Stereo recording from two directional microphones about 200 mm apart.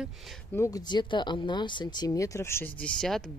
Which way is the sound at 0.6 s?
20° left (ahead or behind).